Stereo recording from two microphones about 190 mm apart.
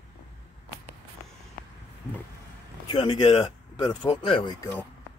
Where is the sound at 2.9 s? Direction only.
25° left (ahead or behind).